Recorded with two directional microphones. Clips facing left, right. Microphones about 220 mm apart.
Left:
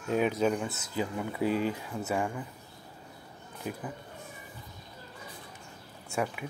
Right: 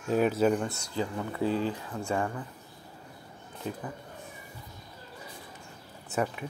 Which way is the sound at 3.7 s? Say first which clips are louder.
Right 1 dB; 15° left (ahead or behind).